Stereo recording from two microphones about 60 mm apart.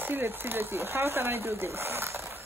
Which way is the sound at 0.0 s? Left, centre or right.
Right.